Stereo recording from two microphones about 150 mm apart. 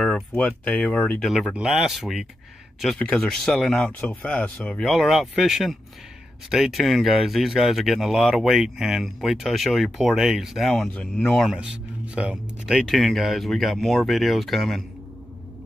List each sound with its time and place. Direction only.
0.0 s speech: 5° left (ahead or behind)
1.2 s speech: centre (ahead or behind)